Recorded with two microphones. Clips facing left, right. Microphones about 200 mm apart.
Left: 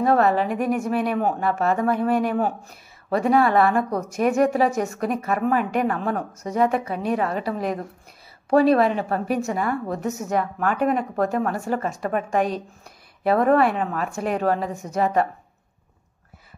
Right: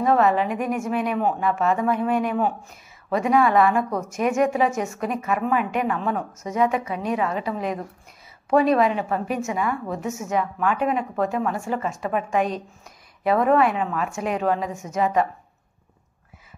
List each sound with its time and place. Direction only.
0.0 s a woman's voice: 40° left (ahead or behind)